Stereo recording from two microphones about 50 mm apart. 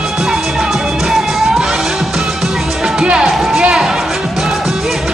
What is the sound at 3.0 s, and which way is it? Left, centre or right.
Music, centre.